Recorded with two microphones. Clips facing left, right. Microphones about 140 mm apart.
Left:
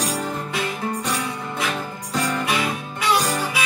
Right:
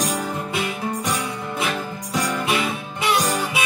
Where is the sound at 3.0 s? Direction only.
20° right (ahead or behind).